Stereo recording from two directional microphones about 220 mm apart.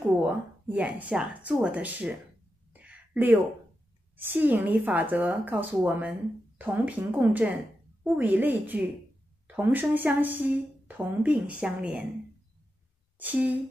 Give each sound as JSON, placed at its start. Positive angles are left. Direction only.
{"t": 0.1, "sound": "speech", "side_deg": -5}
{"t": 2.7, "sound": "a sound", "side_deg": -5}
{"t": 4.2, "sound": "speech", "side_deg": -10}
{"t": 13.2, "sound": "speech", "side_deg": -5}